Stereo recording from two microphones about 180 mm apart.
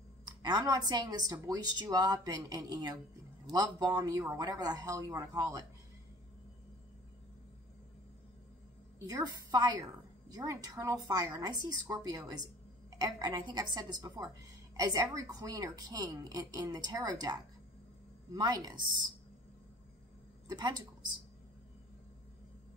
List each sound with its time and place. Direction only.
0.2 s a woman's voice: 25° right (ahead or behind)
9.0 s a woman's voice: 20° right (ahead or behind)
20.4 s speech: 25° right (ahead or behind)